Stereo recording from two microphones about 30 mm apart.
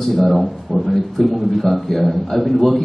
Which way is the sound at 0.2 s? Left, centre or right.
Centre.